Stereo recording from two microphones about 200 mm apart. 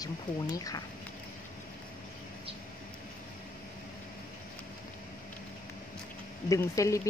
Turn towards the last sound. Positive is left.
turn(degrees=15)  # may be behind; listen again after turning